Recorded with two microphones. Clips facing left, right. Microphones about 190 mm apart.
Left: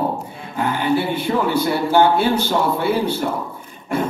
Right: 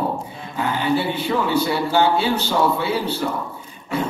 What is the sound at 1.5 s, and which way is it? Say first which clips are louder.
A man's voice: left 3 dB; 50° left (ahead or behind).